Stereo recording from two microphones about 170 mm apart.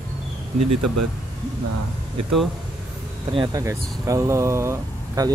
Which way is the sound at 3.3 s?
20° right (ahead or behind).